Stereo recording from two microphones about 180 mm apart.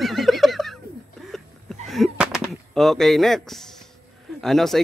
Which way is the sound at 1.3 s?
Centre (ahead or behind).